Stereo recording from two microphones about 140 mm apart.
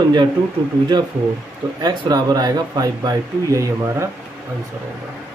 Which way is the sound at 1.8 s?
30° right (ahead or behind).